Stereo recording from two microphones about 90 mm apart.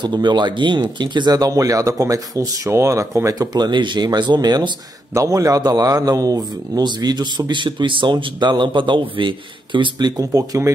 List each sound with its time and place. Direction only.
0.0 s a man's voice: 55° right (ahead or behind); by 3.1 s 35° right (ahead or behind)
3.3 s a man's voice: 45° right (ahead or behind)
5.1 s a man's voice: 35° right (ahead or behind)